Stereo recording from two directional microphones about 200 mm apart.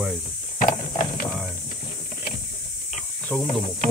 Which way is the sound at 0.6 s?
45° left (ahead or behind).